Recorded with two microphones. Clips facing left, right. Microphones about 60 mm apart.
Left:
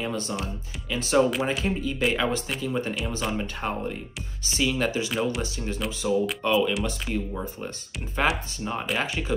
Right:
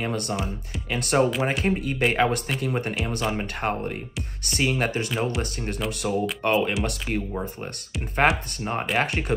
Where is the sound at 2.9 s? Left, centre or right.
Right.